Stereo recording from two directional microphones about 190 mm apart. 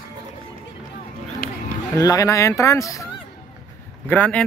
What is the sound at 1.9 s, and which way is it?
Speech, 15° left (ahead or behind).